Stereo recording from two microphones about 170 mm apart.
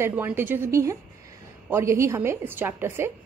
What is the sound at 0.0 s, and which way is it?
A woman's voice, 15° right (ahead or behind).